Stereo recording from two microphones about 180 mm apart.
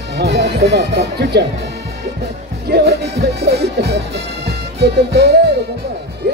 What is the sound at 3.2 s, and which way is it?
Music, 65° right (ahead or behind).